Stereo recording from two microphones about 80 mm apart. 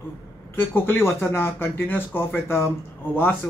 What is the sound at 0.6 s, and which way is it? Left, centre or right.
Speech, left.